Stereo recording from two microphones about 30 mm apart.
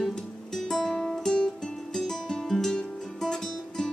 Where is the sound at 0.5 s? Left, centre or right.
Centre.